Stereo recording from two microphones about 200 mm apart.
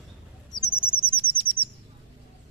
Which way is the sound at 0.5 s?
Centre (ahead or behind).